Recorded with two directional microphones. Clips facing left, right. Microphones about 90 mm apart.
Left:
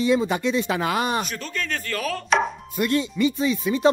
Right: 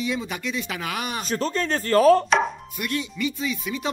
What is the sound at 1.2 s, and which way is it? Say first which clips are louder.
Speech: right 5 dB; 35° right (ahead or behind).